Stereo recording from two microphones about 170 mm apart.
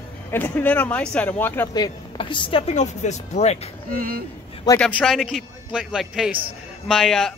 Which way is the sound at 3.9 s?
60° right (ahead or behind).